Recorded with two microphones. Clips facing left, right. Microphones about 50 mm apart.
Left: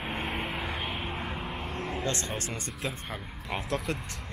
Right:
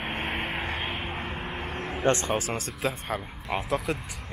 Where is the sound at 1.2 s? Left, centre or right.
Right.